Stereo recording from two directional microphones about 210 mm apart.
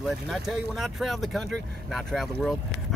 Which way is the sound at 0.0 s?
Centre (ahead or behind).